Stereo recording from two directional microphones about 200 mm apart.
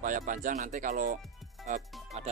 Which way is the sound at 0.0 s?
40° right (ahead or behind).